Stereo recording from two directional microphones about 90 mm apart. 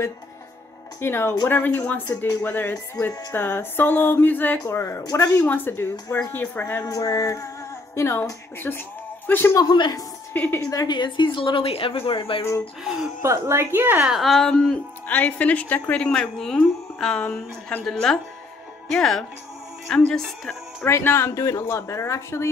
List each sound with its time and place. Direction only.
1.0 s speech: 25° left (ahead or behind)
5.5 s speech: 25° left (ahead or behind)
6.8 s a woman's voice: 40° left (ahead or behind); by 9.6 s 25° left (ahead or behind)
9.6 s speech: 55° left (ahead or behind)
10.3 s speech: 20° left (ahead or behind)
10.6 s speech: 40° left (ahead or behind)
10.9 s a woman's voice: 60° left (ahead or behind); by 12.4 s 85° left
13.2 s a woman's voice: 30° right (ahead or behind)
14.0 s speech: centre (ahead or behind)
14.5 s speech: 15° left (ahead or behind)
17.8 s speech: 5° left (ahead or behind)
20.8 s speech: 25° left (ahead or behind)